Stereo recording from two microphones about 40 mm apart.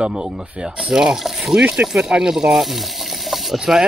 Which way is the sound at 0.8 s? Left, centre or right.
Centre.